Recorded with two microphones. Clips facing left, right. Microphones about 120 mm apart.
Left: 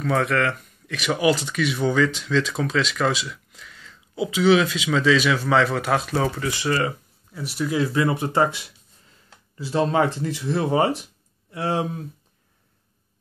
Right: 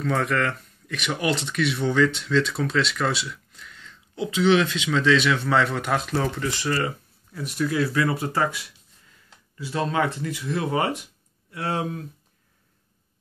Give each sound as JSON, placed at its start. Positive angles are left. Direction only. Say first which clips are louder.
{"t": 0.0, "sound": "speech", "louder": "left 2 dB", "side_deg": 5}
{"t": 7.7, "sound": "speech", "louder": "left 3 dB", "side_deg": 20}